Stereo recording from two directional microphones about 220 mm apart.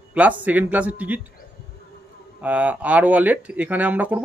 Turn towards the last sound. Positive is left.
turn(degrees=-5)  # may be behind; listen again after turning